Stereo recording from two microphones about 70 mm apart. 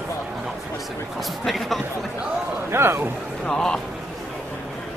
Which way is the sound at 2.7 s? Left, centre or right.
Right.